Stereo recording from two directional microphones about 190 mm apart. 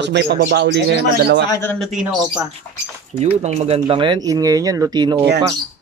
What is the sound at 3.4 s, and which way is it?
Speech, 35° right (ahead or behind).